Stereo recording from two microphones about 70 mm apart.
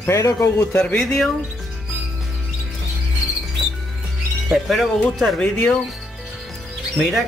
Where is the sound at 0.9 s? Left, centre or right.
Centre.